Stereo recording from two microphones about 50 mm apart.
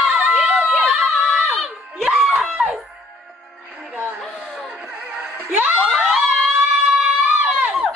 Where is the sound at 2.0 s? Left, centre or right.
Centre.